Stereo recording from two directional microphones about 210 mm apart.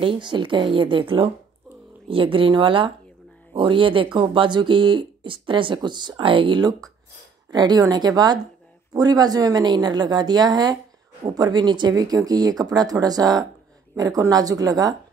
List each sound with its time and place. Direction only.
0.0 s speech: 25° right (ahead or behind)